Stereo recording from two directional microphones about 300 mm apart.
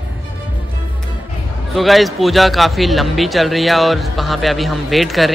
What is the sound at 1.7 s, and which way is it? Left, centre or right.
Speech, centre.